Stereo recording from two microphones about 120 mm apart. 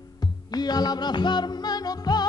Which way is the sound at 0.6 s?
35° left (ahead or behind).